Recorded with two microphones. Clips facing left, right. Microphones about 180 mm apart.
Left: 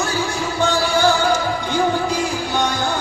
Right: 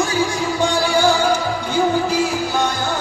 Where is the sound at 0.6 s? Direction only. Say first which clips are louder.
Even; 10° right (ahead or behind).